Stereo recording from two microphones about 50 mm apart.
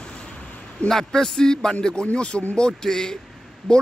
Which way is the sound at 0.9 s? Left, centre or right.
Centre.